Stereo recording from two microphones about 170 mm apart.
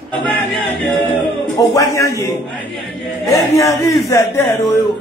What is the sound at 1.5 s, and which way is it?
A man's voice, 20° left (ahead or behind).